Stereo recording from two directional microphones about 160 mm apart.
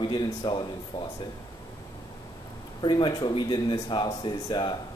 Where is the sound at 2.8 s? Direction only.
30° left (ahead or behind).